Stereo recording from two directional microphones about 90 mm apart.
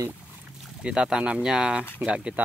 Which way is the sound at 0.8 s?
10° right (ahead or behind).